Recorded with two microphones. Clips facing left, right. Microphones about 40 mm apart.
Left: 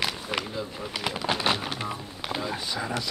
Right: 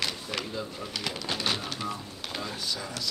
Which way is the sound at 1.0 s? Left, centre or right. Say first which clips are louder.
Left 5 dB; left.